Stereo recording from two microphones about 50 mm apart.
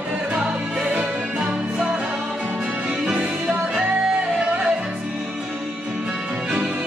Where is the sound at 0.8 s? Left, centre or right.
Right.